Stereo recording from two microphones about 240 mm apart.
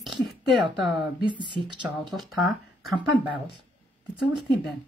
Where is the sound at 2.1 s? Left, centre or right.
Centre.